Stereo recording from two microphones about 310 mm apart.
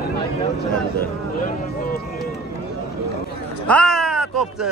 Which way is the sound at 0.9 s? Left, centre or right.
Left.